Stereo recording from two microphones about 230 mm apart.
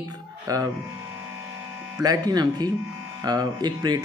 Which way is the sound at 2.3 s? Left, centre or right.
Centre.